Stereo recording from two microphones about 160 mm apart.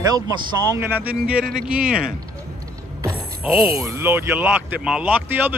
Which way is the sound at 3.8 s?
15° right (ahead or behind).